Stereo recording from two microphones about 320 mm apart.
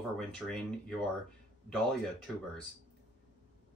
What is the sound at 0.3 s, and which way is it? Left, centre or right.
Speech, centre.